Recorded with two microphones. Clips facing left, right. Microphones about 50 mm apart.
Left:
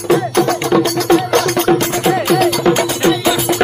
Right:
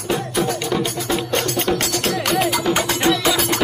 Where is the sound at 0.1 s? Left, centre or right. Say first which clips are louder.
Left 8 dB; left.